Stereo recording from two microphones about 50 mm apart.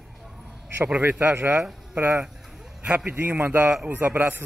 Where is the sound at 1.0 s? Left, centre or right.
Right.